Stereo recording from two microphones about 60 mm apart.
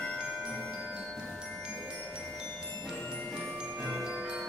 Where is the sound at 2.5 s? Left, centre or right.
Left.